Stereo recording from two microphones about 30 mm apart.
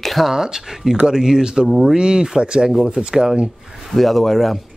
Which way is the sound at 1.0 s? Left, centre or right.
Right.